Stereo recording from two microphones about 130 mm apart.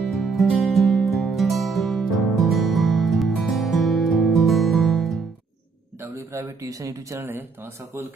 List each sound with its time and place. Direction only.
0.0 s music: centre (ahead or behind)
5.9 s speech: 20° right (ahead or behind)